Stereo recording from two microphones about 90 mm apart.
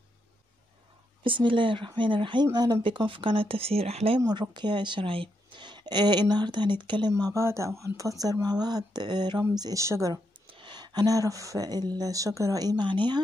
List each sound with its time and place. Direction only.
1.2 s speech: 70° right (ahead or behind)
2.4 s speech: 50° right (ahead or behind)
3.1 s speech: 75° right (ahead or behind); by 4.2 s 90° right
4.2 s speech: 55° right (ahead or behind)
9.6 s speech: 45° right (ahead or behind)
10.4 s speech: 65° right (ahead or behind)